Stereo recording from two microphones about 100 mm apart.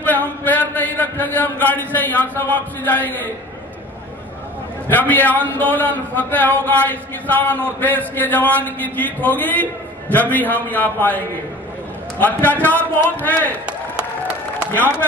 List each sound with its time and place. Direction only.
0.0 s a sound: 15° left (ahead or behind)
2.3 s a man's voice: 20° left (ahead or behind)
4.8 s a man's voice: 20° left (ahead or behind)
13.7 s applause: 10° right (ahead or behind)